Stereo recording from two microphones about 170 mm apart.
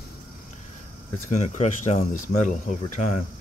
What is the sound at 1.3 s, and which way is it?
Speech, 45° left (ahead or behind).